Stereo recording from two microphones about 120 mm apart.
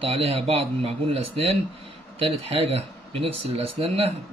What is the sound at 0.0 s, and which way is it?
Speech, 50° right (ahead or behind).